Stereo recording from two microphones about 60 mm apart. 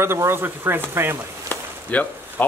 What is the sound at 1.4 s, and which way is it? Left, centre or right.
Chop, left.